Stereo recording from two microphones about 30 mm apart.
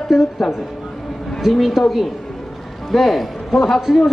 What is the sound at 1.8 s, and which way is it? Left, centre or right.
A woman's voice, centre.